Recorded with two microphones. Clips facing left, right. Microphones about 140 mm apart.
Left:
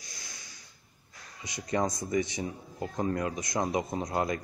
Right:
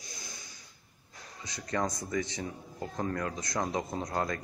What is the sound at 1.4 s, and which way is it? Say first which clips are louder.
Speech: left 3 dB; 15° left (ahead or behind).